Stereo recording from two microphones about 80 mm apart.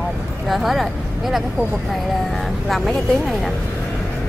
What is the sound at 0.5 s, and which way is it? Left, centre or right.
Speech, centre.